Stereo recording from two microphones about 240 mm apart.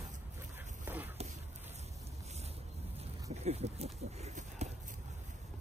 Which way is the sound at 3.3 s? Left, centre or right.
Right.